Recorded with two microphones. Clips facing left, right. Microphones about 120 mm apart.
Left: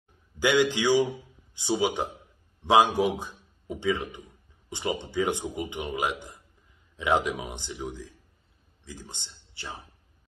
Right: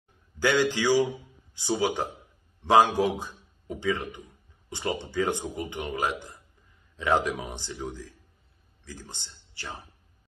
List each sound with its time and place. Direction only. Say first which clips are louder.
0.4 s a man's voice: left 1 dB; 15° left (ahead or behind)